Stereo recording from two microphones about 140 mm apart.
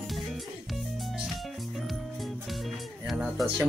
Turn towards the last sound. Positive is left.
turn(degrees=-5)  # may be behind; listen again after turning